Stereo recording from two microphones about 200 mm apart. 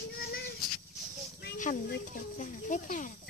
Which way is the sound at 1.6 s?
40° left (ahead or behind).